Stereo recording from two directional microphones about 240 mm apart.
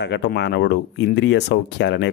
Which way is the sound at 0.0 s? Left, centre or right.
Left.